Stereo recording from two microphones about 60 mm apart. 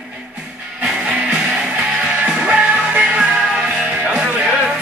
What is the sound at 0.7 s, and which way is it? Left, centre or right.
Music, right.